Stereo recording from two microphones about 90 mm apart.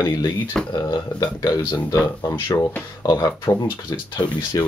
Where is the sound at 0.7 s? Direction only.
60° left (ahead or behind).